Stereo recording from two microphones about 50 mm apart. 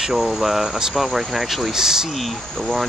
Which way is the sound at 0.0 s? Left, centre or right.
Centre.